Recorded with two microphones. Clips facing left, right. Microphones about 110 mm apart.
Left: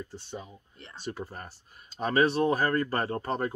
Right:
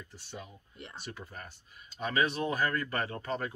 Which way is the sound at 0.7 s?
10° right (ahead or behind).